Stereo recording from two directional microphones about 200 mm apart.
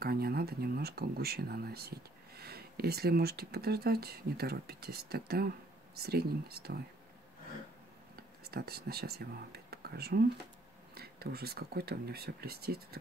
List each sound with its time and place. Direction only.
0.0 s speech: 50° right (ahead or behind)
8.2 s speech: 50° right (ahead or behind)